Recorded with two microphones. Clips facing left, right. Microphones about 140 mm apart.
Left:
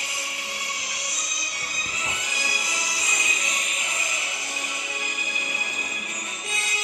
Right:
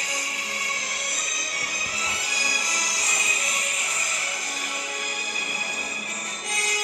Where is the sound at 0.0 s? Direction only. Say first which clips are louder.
Right 2 dB; 45° right (ahead or behind).